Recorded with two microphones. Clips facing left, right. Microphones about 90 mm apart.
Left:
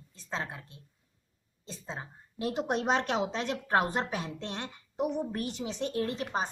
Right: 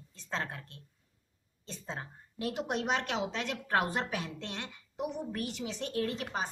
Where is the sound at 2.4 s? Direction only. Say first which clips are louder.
Left 3 dB; 30° left (ahead or behind).